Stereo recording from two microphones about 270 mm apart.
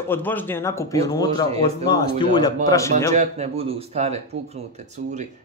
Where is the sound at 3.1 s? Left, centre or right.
Right.